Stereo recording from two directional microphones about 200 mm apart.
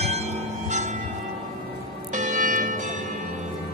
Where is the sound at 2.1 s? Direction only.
40° right (ahead or behind).